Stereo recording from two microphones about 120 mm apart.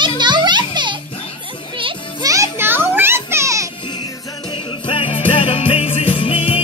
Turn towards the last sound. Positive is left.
turn(degrees=50)  # may be behind; listen again after turning